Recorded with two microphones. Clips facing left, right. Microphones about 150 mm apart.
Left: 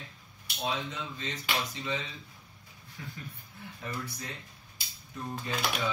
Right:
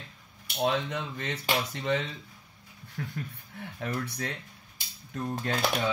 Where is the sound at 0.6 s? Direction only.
65° right (ahead or behind).